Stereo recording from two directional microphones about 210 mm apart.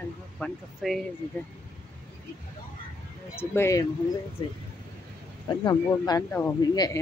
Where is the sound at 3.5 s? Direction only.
15° left (ahead or behind).